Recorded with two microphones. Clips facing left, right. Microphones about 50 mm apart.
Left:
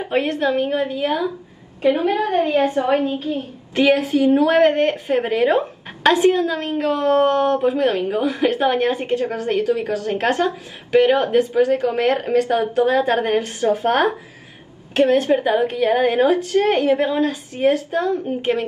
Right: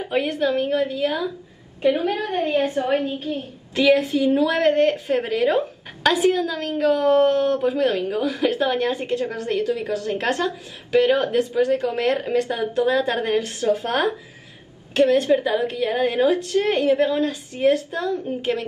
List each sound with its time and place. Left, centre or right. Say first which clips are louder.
0.0 s a woman's voice: left 2 dB; left